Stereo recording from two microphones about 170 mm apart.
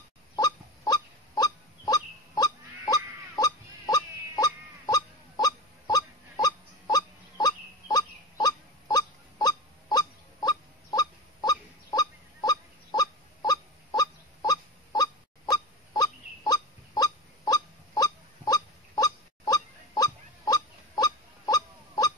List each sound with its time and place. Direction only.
0.4 s honk: 25° left (ahead or behind)